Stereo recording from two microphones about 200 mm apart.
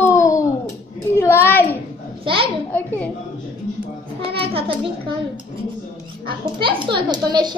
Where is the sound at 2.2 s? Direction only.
25° right (ahead or behind).